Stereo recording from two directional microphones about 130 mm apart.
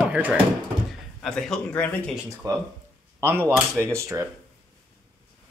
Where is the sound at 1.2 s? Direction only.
5° left (ahead or behind).